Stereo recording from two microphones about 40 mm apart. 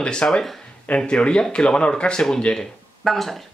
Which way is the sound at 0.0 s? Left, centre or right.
Left.